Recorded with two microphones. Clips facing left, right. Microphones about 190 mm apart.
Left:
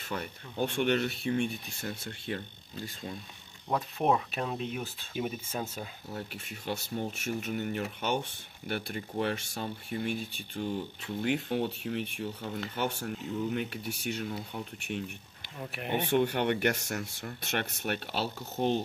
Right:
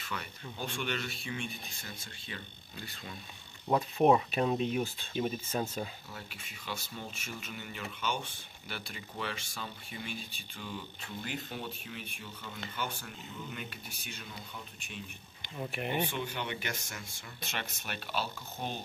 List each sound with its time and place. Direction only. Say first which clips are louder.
0.1 s speech: left 5 dB; 50° left (ahead or behind)
2.8 s speech: left 6 dB; 40° left (ahead or behind)
3.6 s speech: right 3 dB; 5° right (ahead or behind)
6.1 s speech: left 8 dB; 60° left (ahead or behind)
15.6 s speech: right 2 dB; centre (ahead or behind)
16.1 s speech: left 11 dB; 65° left (ahead or behind)